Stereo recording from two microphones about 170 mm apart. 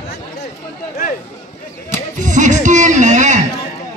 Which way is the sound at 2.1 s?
45° right (ahead or behind).